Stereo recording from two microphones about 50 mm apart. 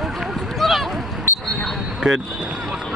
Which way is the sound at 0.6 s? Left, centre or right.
Centre.